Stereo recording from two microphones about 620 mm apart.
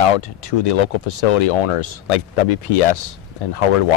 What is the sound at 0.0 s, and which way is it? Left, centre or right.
Speech, left.